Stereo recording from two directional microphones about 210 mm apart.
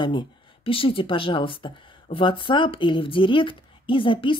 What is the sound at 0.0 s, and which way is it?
Speech, 20° left (ahead or behind).